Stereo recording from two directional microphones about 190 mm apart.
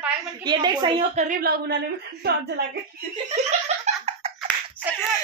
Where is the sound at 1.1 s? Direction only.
45° right (ahead or behind).